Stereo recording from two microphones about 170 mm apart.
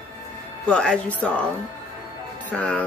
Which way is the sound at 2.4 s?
10° left (ahead or behind).